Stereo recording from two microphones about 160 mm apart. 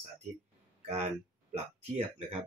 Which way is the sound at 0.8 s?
45° right (ahead or behind).